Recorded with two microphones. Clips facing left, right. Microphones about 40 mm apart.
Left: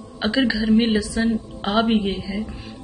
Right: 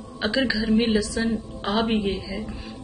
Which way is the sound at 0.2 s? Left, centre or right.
Centre.